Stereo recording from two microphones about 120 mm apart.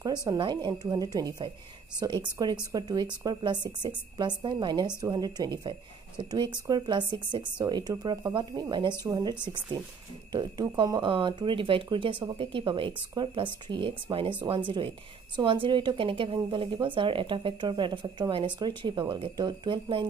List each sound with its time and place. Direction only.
0.0 s a woman's voice: 35° right (ahead or behind)
10.3 s speech: 35° right (ahead or behind)